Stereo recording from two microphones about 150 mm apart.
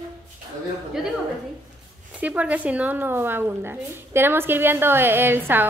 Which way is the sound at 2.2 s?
10° right (ahead or behind).